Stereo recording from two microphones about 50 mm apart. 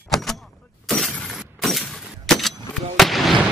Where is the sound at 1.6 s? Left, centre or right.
Centre.